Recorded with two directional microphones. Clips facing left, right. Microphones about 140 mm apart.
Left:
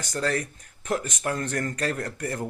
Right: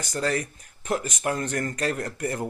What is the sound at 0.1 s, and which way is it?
Speech, 10° right (ahead or behind).